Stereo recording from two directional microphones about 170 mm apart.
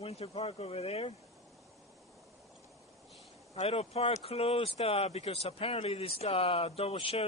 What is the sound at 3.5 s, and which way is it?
Speech, 35° left (ahead or behind).